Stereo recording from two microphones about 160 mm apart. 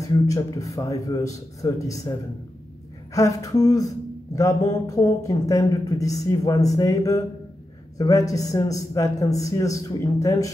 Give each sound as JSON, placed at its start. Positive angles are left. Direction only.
{"t": 0.0, "sound": "speech", "side_deg": 20}
{"t": 3.2, "sound": "speech", "side_deg": 20}